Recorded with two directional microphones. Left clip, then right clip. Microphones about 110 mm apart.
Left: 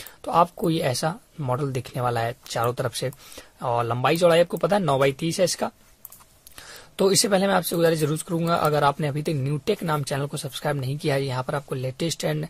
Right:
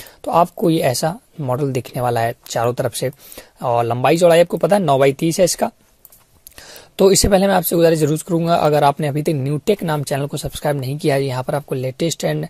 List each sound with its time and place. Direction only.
0.0 s speech: 55° right (ahead or behind)